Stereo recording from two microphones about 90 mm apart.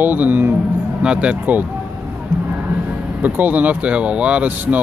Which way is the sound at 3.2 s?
20° right (ahead or behind).